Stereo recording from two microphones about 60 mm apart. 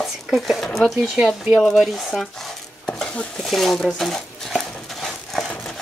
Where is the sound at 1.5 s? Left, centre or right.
Centre.